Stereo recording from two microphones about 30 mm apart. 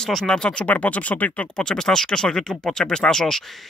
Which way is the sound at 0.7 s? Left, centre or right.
Left.